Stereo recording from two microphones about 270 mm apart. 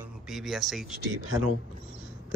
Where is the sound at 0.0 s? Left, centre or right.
Centre.